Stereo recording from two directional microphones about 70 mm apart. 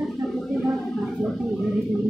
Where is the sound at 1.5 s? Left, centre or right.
Centre.